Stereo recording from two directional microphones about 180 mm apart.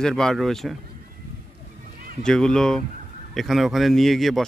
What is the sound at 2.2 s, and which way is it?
Speech, 5° left (ahead or behind).